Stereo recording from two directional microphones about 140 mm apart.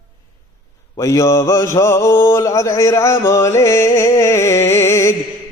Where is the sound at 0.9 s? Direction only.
20° left (ahead or behind).